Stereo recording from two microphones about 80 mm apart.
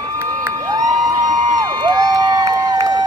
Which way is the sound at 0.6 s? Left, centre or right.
Right.